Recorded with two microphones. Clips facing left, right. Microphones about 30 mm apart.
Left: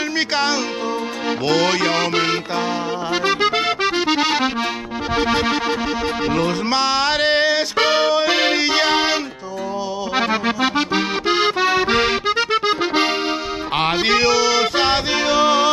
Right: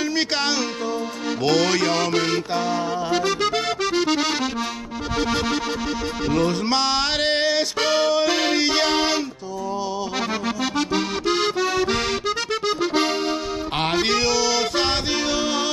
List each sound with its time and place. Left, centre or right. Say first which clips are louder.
1.4 s music: left 1 dB; centre
3.1 s accordion: left 5 dB; left
6.7 s music: left 3 dB; centre
10.1 s accordion: left 10 dB; left
13.7 s music: left 4 dB; centre